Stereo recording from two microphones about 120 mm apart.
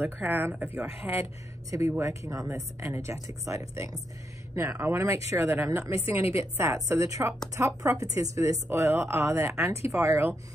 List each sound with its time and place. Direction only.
0.0 s a woman's voice: 15° right (ahead or behind)
4.6 s a woman's voice: 15° right (ahead or behind)